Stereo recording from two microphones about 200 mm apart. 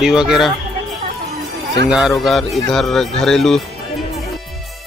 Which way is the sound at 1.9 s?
Centre (ahead or behind).